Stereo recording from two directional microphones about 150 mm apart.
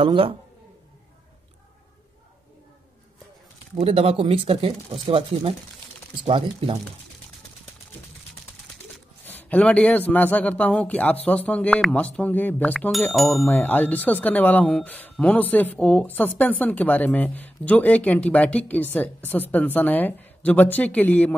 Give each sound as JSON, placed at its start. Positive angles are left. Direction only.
{"t": 0.0, "sound": "speech", "side_deg": -35}
{"t": 3.8, "sound": "speech", "side_deg": -40}
{"t": 9.2, "sound": "speech", "side_deg": 10}
{"t": 13.5, "sound": "speech", "side_deg": 10}